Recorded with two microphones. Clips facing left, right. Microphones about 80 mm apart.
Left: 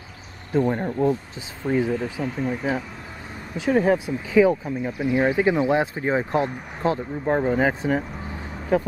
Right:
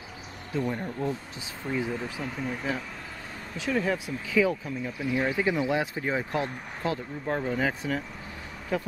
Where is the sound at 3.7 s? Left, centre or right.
Left.